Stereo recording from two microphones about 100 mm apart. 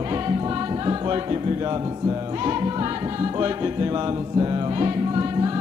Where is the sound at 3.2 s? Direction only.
45° right (ahead or behind).